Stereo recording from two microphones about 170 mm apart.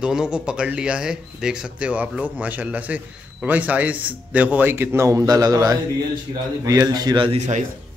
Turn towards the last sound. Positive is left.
turn(degrees=-30)  # may be behind; listen again after turning